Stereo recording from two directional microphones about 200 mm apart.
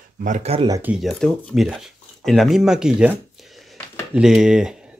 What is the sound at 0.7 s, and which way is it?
Speech, 10° right (ahead or behind).